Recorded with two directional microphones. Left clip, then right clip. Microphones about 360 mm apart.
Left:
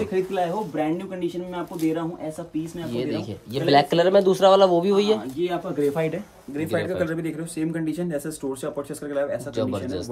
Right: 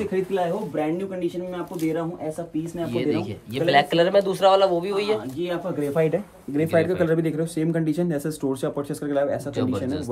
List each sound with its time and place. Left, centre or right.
0.0 s speech: centre
2.9 s a man's voice: centre
5.4 s speech: centre
6.5 s speech: centre
9.6 s speech: centre